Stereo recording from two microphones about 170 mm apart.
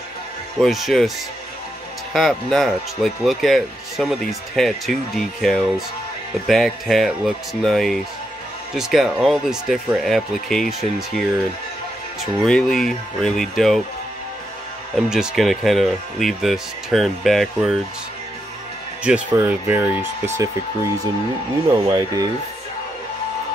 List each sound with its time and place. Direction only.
0.6 s speech: centre (ahead or behind)
2.1 s speech: centre (ahead or behind)
15.0 s speech: 5° right (ahead or behind)
19.0 s speech: 10° right (ahead or behind)
21.8 s speech: 20° right (ahead or behind)